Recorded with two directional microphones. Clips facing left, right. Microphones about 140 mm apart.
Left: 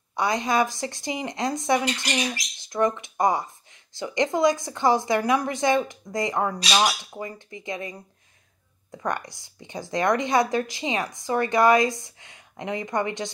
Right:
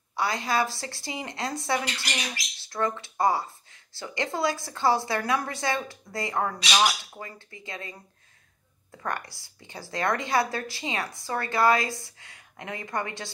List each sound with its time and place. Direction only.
0.1 s speech: 20° left (ahead or behind)